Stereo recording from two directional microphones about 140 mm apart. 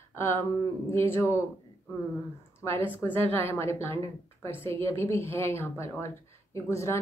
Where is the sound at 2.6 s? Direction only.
20° left (ahead or behind).